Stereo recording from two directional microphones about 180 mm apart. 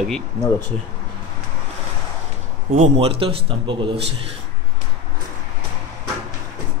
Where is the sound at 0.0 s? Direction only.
5° left (ahead or behind).